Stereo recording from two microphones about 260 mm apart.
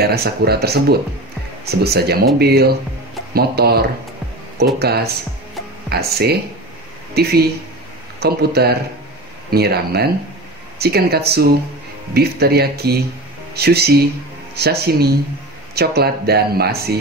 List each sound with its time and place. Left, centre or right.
0.0 s speech: right